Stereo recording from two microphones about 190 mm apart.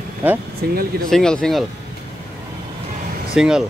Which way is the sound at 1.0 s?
5° left (ahead or behind).